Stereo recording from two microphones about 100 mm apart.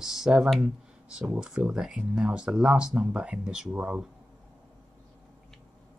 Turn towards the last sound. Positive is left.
turn(degrees=-10)  # may be behind; listen again after turning